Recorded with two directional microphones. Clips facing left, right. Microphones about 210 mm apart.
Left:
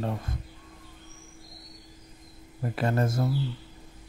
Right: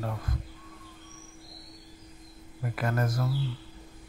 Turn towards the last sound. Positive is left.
turn(degrees=25)  # may be behind; listen again after turning